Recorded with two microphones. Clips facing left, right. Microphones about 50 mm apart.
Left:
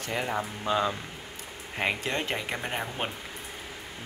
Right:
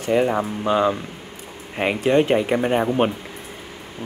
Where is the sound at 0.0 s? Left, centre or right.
Centre.